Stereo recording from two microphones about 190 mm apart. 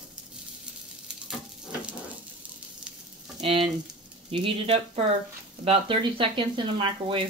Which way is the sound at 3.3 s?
30° right (ahead or behind).